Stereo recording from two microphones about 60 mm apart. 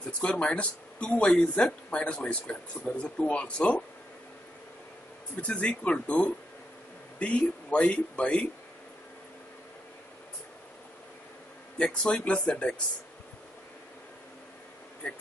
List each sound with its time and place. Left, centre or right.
0.2 s speech: centre
5.4 s speech: centre
11.8 s speech: centre